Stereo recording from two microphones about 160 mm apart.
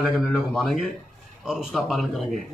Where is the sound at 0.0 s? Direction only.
Centre (ahead or behind).